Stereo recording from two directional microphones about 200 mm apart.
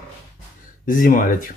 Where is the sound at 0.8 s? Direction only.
45° left (ahead or behind).